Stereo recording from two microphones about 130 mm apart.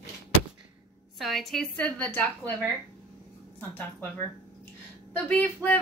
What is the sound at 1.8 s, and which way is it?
A woman's voice, 10° left (ahead or behind).